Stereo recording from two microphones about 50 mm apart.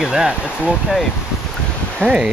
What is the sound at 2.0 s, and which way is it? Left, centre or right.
Speech, left.